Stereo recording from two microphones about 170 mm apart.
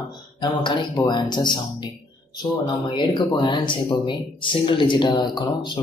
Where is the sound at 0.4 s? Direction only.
25° left (ahead or behind).